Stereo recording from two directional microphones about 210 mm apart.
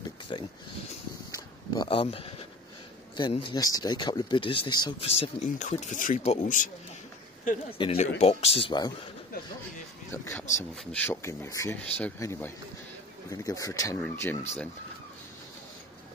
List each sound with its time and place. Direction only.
0.3 s speech: 25° left (ahead or behind)
7.7 s speech: 25° left (ahead or behind)
10.1 s speech: 10° left (ahead or behind)